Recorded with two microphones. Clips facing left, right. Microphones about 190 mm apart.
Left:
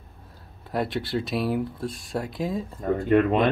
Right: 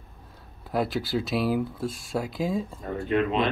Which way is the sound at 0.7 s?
Centre (ahead or behind).